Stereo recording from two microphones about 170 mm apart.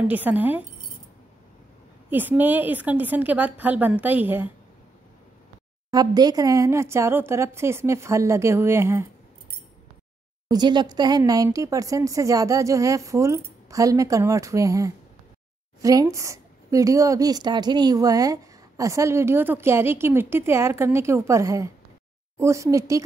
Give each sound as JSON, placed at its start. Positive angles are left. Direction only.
{"t": 0.0, "sound": "a woman's voice", "side_deg": -10}
{"t": 2.0, "sound": "a woman's voice", "side_deg": -10}
{"t": 5.9, "sound": "a woman's voice", "side_deg": -25}
{"t": 10.5, "sound": "a woman's voice", "side_deg": -25}